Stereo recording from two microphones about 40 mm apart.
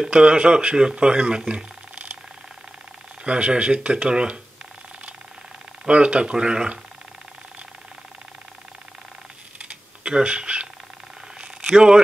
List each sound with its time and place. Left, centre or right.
0.1 s speech: right
3.3 s speech: right
5.9 s speech: right
9.6 s typing: right
11.4 s a sound: centre